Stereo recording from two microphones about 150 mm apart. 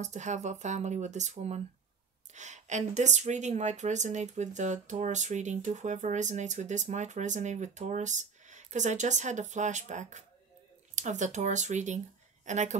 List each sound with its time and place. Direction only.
0.0 s a woman's voice: 50° right (ahead or behind)